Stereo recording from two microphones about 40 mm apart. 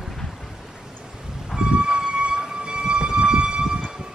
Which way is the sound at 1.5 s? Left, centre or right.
Right.